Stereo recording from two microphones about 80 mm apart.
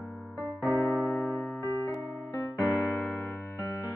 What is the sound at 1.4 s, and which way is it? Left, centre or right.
Music, left.